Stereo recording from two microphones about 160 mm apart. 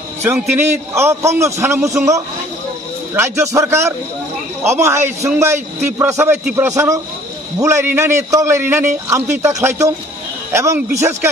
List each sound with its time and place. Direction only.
0.6 s a man's voice: 15° right (ahead or behind)